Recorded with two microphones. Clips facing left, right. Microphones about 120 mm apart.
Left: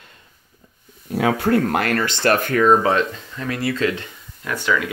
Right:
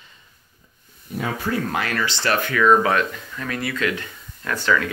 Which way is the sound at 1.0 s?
85° left.